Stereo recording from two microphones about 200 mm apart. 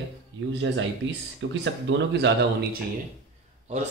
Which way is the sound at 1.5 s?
65° right (ahead or behind).